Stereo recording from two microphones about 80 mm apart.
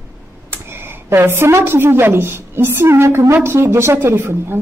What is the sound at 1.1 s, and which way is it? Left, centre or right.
A woman's voice, right.